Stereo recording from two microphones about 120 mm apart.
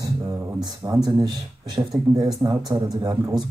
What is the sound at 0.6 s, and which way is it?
Speech, 30° right (ahead or behind).